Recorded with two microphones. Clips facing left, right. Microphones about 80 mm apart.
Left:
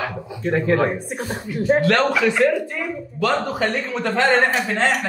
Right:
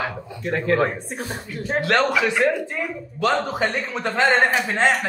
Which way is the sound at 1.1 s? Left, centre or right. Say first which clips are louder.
Left 4 dB; centre.